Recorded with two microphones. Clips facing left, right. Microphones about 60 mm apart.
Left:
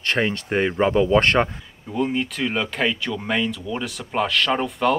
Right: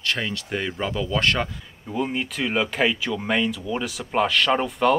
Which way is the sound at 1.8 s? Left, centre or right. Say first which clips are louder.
Left 3 dB; centre.